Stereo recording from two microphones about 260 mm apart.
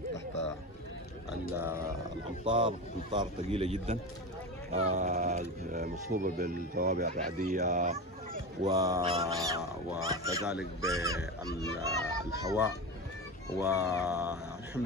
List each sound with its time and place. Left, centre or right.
1.6 s speech: centre
2.4 s a man's voice: centre
8.6 s speech: centre
9.6 s speech: centre
10.0 s speech: centre